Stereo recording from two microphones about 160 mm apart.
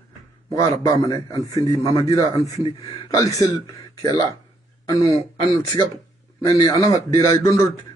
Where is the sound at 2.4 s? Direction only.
35° left (ahead or behind).